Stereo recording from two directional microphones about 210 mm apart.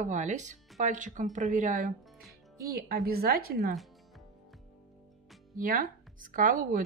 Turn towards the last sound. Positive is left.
turn(degrees=-40)  # may be behind; listen again after turning